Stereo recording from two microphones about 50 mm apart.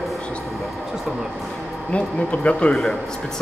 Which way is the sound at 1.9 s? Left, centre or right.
Left.